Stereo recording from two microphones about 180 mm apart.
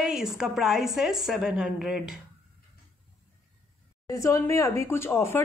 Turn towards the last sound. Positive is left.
turn(degrees=15)  # may be behind; listen again after turning